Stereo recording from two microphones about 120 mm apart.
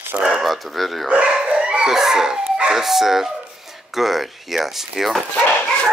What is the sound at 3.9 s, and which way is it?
Speech, centre (ahead or behind).